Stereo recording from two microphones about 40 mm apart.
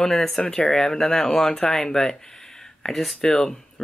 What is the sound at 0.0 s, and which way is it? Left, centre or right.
Speech, centre.